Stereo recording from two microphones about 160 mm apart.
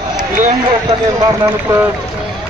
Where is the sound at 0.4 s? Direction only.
40° right (ahead or behind).